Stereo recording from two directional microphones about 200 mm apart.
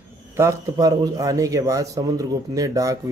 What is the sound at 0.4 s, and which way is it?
A man's voice, 15° right (ahead or behind).